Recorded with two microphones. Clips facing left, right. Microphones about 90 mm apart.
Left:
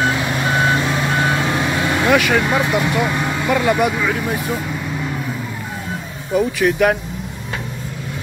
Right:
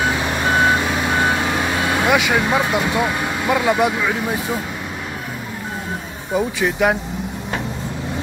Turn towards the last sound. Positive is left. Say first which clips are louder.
# left 3 dB
turn(degrees=-20)  # may be behind; listen again after turning